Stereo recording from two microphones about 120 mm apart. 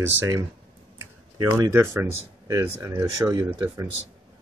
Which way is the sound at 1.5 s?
25° right (ahead or behind).